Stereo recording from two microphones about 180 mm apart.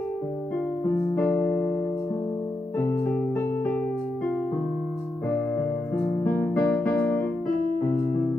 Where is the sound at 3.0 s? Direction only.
10° left (ahead or behind).